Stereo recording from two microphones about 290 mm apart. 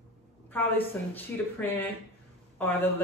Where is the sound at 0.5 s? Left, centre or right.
Centre.